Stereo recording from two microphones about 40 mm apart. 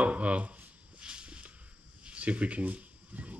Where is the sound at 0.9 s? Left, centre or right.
Right.